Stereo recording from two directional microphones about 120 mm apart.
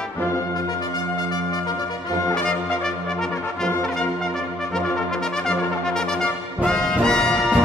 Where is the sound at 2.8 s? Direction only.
5° left (ahead or behind).